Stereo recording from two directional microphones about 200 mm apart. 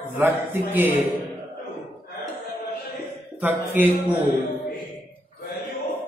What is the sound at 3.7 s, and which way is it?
Speech, 10° right (ahead or behind).